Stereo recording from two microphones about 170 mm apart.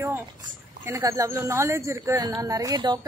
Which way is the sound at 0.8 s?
20° right (ahead or behind).